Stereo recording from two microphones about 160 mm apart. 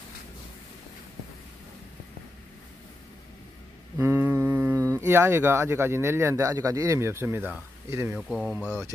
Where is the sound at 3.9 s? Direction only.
15° right (ahead or behind).